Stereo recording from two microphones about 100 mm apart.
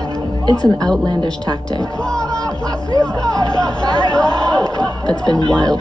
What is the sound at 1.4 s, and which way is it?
Speech, 40° right (ahead or behind).